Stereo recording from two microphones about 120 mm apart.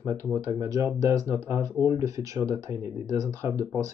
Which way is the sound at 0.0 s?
20° right (ahead or behind).